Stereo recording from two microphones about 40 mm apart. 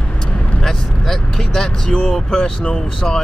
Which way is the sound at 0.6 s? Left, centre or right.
Centre.